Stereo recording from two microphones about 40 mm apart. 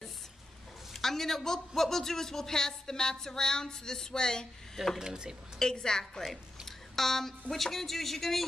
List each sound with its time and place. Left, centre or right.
1.0 s a woman's voice: centre
4.9 s speech: centre
5.6 s speech: centre
6.3 s a sound: centre
7.5 s speech: centre